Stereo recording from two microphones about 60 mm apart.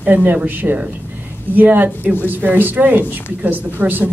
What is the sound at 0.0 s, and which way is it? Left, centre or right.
Speech, right.